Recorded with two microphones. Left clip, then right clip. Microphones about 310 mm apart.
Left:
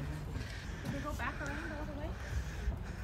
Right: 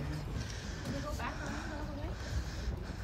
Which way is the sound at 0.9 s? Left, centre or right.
Centre.